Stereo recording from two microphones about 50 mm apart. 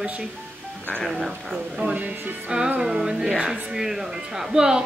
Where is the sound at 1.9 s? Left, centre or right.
Right.